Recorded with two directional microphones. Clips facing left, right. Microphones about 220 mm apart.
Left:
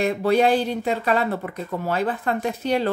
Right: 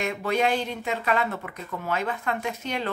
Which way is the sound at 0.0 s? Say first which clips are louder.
Left 6 dB; 35° left (ahead or behind).